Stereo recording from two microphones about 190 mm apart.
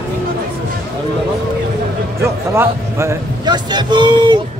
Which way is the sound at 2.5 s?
15° right (ahead or behind).